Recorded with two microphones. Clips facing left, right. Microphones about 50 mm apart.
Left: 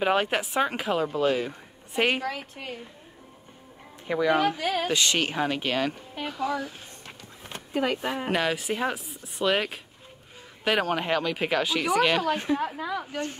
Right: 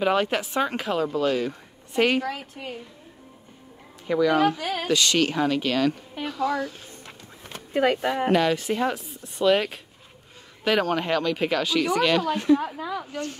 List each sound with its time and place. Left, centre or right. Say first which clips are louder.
0.0 s speech: right 1 dB; centre
2.2 s speech: right 1 dB; centre
4.1 s speech: right 3 dB; centre
6.2 s a sound: right 3 dB; centre
7.7 s speech: right 5 dB; right
8.3 s speech: right 4 dB; centre
13.1 s speech: even; left